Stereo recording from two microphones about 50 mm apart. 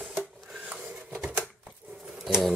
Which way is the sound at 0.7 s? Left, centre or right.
Centre.